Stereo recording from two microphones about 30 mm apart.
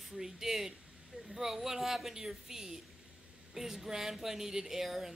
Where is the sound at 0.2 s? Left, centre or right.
Centre.